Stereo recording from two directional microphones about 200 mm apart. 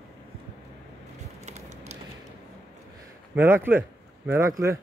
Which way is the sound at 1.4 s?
35° right (ahead or behind).